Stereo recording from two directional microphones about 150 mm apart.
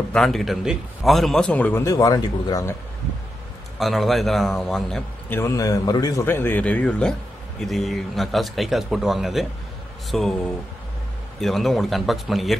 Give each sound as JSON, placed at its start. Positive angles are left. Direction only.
{"t": 0.1, "sound": "a man's voice", "side_deg": 0}
{"t": 3.8, "sound": "speech", "side_deg": 0}
{"t": 5.3, "sound": "a man's voice", "side_deg": 20}
{"t": 6.2, "sound": "a man's voice", "side_deg": 15}